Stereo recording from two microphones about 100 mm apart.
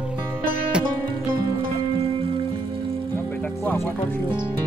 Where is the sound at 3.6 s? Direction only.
25° left (ahead or behind).